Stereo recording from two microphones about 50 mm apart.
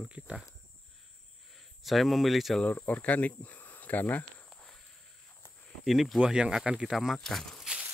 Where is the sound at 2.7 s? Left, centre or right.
Left.